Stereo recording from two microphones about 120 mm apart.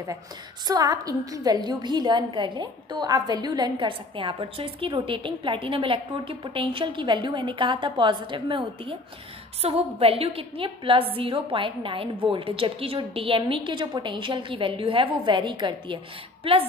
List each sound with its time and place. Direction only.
0.7 s a woman's voice: 30° right (ahead or behind)
9.6 s a woman's voice: 55° right (ahead or behind)